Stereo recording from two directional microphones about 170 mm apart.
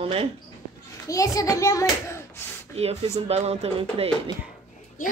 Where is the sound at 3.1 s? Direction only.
40° right (ahead or behind).